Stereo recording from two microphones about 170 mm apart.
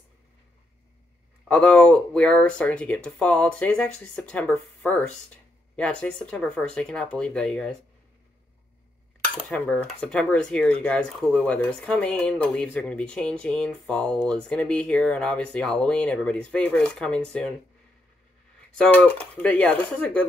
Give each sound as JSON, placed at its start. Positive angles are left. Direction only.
{"t": 1.5, "sound": "speech", "side_deg": 5}
{"t": 9.5, "sound": "speech", "side_deg": 10}
{"t": 18.8, "sound": "speech", "side_deg": 10}